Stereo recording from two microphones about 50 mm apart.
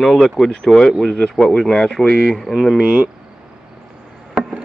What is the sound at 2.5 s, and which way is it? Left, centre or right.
Speech, centre.